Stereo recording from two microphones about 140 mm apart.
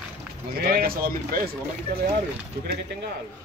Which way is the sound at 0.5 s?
90° right.